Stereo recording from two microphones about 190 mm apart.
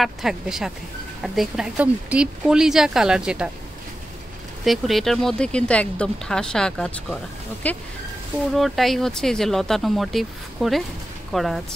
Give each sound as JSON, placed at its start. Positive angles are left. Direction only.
{"t": 0.0, "sound": "speech", "side_deg": 0}
{"t": 4.6, "sound": "speech", "side_deg": 0}